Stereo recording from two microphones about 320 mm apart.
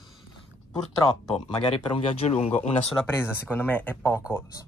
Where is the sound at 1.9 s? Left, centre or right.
Centre.